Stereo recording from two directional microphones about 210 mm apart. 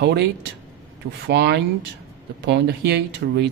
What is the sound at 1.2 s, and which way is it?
Speech, 55° right (ahead or behind).